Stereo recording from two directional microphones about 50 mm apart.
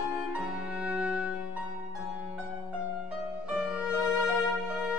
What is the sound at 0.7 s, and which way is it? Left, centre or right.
Music, centre.